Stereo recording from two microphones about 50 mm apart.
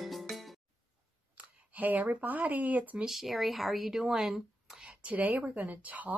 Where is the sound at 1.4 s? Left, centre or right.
Right.